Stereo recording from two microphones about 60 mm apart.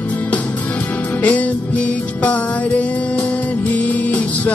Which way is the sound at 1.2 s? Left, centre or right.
Left.